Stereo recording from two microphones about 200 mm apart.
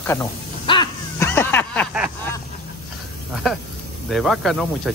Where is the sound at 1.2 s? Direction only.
10° left (ahead or behind).